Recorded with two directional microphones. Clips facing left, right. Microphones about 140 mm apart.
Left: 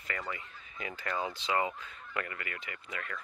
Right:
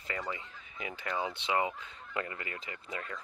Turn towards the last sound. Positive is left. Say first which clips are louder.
# right 1 dB
turn(degrees=-25)  # may be behind; listen again after turning